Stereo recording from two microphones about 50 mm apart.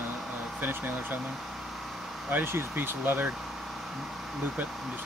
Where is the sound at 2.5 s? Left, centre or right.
Right.